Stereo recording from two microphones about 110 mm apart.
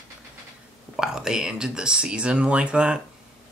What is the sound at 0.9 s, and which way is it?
Speech, 5° right (ahead or behind).